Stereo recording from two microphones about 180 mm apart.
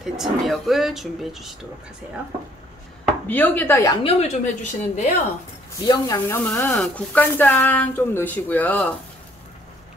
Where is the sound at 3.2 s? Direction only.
10° left (ahead or behind).